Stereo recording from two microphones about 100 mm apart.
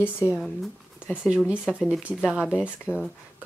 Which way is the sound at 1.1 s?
10° right (ahead or behind).